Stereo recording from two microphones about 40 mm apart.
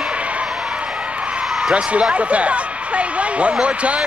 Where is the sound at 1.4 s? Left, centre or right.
Centre.